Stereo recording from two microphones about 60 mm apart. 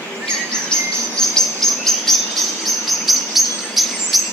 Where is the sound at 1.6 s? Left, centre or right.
Centre.